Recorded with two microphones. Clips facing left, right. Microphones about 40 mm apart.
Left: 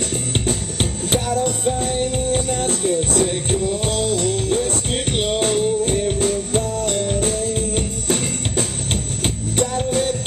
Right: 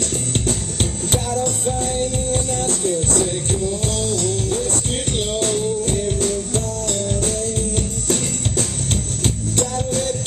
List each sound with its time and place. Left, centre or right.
0.3 s music: centre